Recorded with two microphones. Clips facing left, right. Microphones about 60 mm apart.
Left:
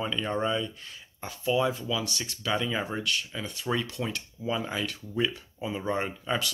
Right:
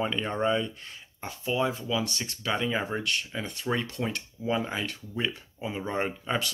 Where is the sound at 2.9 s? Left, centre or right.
Right.